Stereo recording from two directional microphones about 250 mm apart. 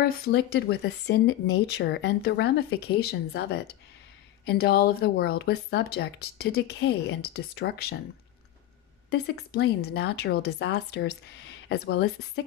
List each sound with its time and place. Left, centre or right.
0.0 s speech: left
9.1 s speech: left